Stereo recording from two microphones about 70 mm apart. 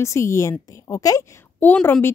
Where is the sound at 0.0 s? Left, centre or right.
Left.